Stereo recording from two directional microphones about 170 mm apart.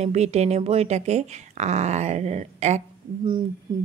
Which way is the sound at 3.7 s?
25° right (ahead or behind).